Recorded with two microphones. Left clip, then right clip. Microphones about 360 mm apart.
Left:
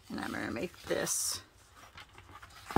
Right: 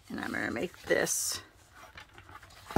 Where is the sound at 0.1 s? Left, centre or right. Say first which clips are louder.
Right 3 dB; centre.